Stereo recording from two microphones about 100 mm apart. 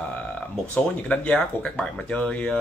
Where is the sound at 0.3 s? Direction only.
10° left (ahead or behind).